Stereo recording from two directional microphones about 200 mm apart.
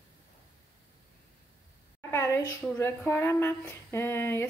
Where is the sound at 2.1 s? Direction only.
15° left (ahead or behind).